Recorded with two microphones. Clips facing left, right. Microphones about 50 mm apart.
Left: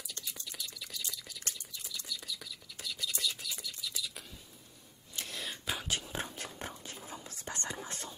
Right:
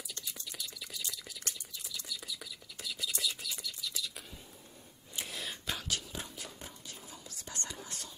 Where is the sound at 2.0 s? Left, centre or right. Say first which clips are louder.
Even; centre.